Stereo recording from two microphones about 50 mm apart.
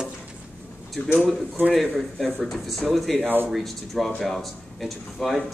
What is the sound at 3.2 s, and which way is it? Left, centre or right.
Speech, right.